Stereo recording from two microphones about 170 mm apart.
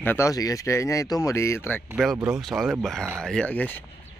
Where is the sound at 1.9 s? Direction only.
Centre (ahead or behind).